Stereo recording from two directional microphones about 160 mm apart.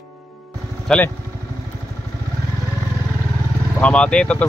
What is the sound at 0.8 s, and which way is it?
Speech, 5° left (ahead or behind).